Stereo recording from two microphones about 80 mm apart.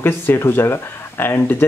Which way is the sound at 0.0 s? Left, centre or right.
Left.